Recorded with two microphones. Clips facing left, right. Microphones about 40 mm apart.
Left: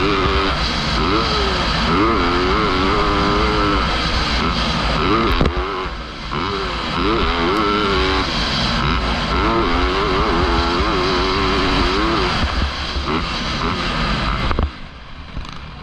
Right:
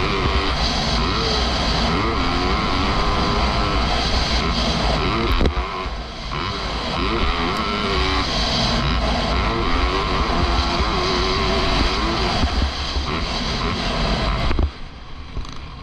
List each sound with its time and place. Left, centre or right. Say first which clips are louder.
0.1 s vehicle: left 4 dB; left
1.4 s vehicle: left 3 dB; left
1.8 s vehicle: left 6 dB; centre
2.0 s vehicle: left 5 dB; left
7.1 s vehicle: left 6 dB; left